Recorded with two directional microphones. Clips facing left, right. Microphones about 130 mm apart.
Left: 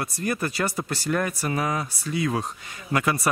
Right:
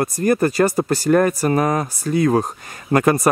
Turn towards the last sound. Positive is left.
turn(degrees=-45)  # may be behind; listen again after turning